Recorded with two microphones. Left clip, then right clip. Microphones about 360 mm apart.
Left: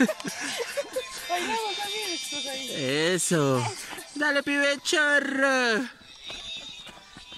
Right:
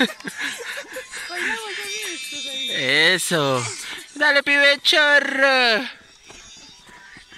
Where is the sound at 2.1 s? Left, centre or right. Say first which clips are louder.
Right 2 dB; left.